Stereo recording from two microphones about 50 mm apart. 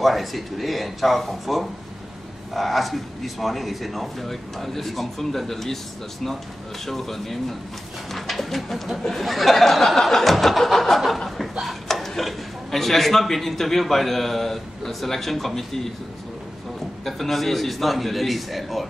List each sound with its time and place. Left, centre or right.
0.0 s speech: centre
6.9 s speech: centre
8.1 s bird: centre
9.0 s speech: centre
17.0 s speech: centre